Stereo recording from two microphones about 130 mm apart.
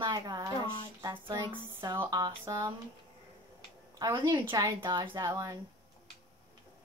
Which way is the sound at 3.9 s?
30° right (ahead or behind).